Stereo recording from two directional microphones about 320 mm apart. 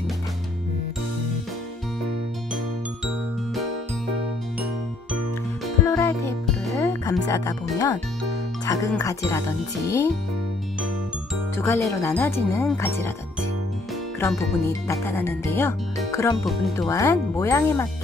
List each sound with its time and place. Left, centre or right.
5.9 s music: centre
8.6 s speech: centre
11.5 s speech: centre
14.2 s speech: centre